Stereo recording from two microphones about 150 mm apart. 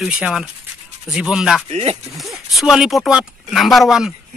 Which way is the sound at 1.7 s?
45° right (ahead or behind).